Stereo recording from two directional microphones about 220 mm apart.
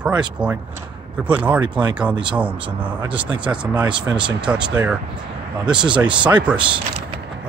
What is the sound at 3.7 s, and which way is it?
Speech, 20° right (ahead or behind).